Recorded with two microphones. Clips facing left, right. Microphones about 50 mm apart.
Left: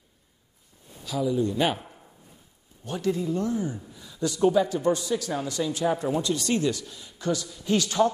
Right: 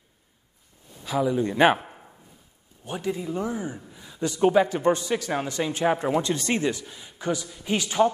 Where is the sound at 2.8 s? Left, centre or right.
Centre.